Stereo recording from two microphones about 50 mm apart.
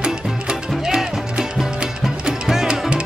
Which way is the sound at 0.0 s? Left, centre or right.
Centre.